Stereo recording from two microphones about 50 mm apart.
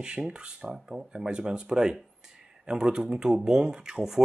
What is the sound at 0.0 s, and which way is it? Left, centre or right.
Speech, centre.